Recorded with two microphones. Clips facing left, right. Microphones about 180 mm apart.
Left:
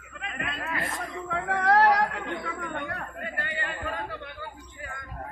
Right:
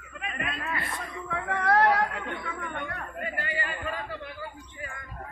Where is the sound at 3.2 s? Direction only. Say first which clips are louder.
Right 5 dB; 5° right (ahead or behind).